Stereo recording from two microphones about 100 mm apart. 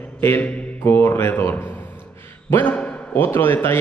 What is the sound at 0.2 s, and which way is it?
A man's voice, 25° left (ahead or behind).